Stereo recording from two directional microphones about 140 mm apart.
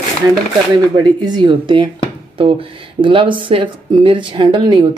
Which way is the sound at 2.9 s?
35° right (ahead or behind).